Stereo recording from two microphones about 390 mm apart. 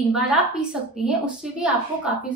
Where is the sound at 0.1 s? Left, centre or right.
Centre.